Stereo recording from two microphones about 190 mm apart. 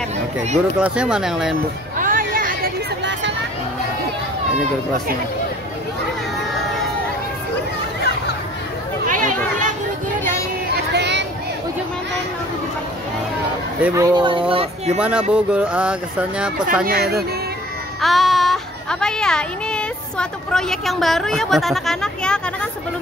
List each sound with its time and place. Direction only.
0.6 s speech: 5° right (ahead or behind)
2.0 s hubbub: 45° right (ahead or behind); by 3.3 s 70° right (ahead or behind)
9.1 s a sound: 40° right (ahead or behind)
10.9 s a sound: 65° right (ahead or behind)
13.7 s speech: 5° right (ahead or behind)
14.0 s speech: 25° right (ahead or behind)
15.0 s speech: 5° right (ahead or behind)
16.8 s speech: 55° right (ahead or behind)
18.0 s speech: centre (ahead or behind)